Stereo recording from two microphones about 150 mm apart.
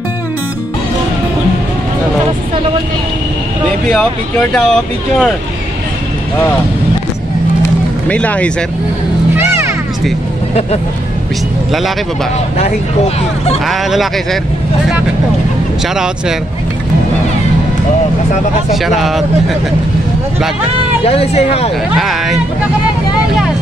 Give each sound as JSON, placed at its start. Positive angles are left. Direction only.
{"t": 4.6, "sound": "speech", "side_deg": 5}
{"t": 8.1, "sound": "speech", "side_deg": 10}
{"t": 9.3, "sound": "vehicle", "side_deg": -15}
{"t": 13.7, "sound": "speech", "side_deg": 0}
{"t": 18.7, "sound": "speech", "side_deg": 0}
{"t": 21.0, "sound": "speech", "side_deg": 40}
{"t": 21.9, "sound": "speech", "side_deg": 0}